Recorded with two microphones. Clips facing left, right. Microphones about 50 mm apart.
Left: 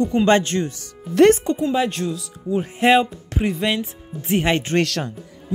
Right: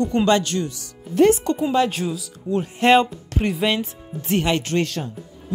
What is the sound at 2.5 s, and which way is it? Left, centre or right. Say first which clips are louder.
Music: left 1 dB; right.